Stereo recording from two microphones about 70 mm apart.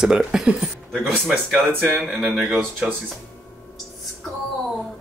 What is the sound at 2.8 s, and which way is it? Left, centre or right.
Speech, centre.